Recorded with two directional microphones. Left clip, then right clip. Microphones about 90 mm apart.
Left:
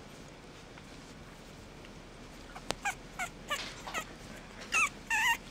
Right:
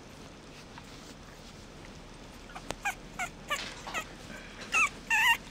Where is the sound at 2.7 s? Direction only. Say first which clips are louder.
Right 1 dB; 15° left (ahead or behind).